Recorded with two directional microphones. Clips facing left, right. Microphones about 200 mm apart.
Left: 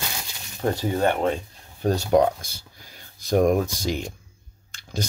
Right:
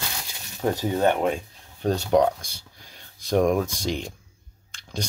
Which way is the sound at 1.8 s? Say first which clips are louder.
Left 1 dB; 10° left (ahead or behind).